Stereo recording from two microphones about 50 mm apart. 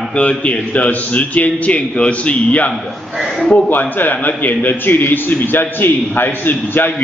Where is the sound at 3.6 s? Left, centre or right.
Left.